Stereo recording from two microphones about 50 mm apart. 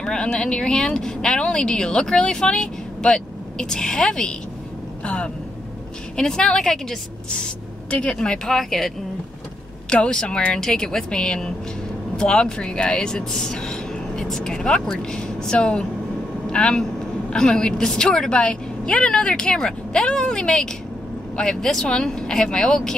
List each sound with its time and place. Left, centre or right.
0.0 s speech: centre
8.2 s speech: centre
9.8 s speech: centre